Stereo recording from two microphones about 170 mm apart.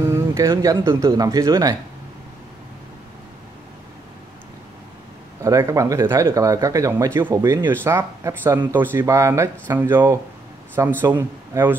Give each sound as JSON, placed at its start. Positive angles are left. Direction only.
{"t": 0.1, "sound": "speech", "side_deg": -15}
{"t": 5.4, "sound": "speech", "side_deg": -15}